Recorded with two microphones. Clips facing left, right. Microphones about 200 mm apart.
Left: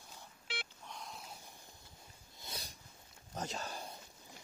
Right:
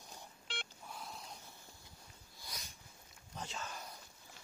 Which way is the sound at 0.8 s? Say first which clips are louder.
Even; 5° right (ahead or behind).